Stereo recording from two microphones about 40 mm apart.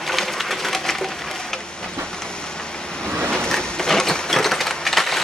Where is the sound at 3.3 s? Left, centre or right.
Centre.